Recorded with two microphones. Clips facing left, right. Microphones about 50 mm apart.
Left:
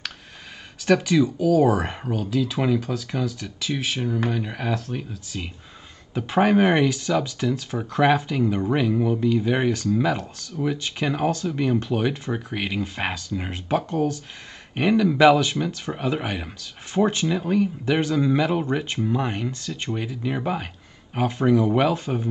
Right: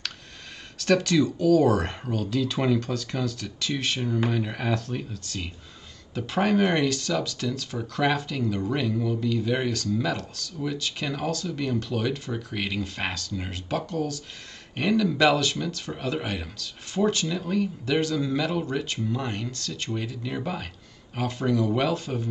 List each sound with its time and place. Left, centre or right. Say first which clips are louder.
0.7 s speech: left 3 dB; centre
6.1 s speech: left 4 dB; left